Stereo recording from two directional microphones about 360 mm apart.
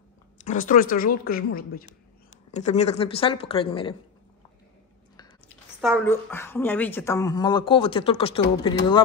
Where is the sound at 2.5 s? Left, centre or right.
Centre.